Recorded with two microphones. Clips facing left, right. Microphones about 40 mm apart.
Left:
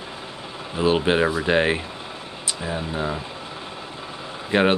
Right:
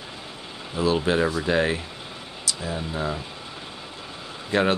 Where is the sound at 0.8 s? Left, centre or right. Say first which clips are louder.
Left 3 dB; left.